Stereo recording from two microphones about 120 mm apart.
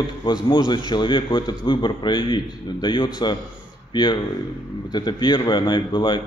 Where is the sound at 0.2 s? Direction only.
40° left (ahead or behind).